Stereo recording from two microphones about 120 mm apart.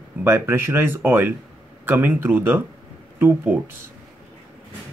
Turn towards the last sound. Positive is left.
turn(degrees=-15)  # may be behind; listen again after turning